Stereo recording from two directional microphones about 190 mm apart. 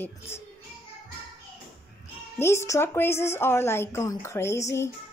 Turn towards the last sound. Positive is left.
turn(degrees=15)  # may be behind; listen again after turning